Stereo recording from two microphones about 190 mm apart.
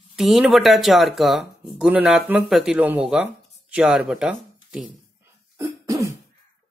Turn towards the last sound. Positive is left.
turn(degrees=-15)  # may be behind; listen again after turning